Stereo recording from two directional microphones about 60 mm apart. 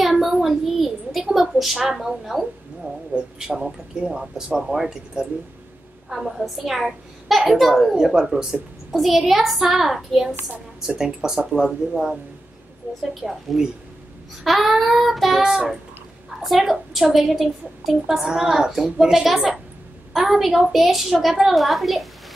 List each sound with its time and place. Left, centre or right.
0.0 s a sound: centre
3.3 s speech: centre
6.0 s a child's voice: centre
12.9 s a woman's voice: right
13.2 s a child's voice: centre